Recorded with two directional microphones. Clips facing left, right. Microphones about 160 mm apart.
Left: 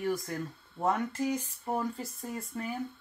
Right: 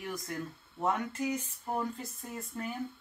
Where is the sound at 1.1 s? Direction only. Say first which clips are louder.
Left 2 dB; 35° left (ahead or behind).